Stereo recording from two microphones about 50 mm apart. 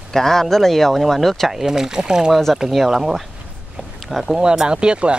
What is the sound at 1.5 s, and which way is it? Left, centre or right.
Speech, centre.